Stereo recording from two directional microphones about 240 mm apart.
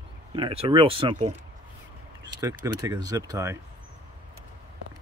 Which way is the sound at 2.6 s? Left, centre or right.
Centre.